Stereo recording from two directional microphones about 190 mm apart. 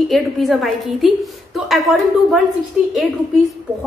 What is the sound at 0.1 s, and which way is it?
A woman's voice, centre (ahead or behind).